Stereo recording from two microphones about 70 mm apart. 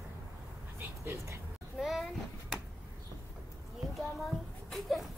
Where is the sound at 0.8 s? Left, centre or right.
Right.